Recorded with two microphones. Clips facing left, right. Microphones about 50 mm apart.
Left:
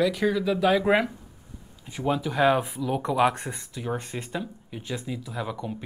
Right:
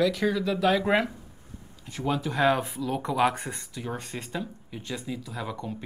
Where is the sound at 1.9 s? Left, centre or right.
Centre.